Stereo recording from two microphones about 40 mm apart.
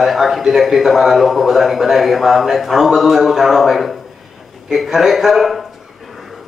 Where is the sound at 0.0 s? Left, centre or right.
Centre.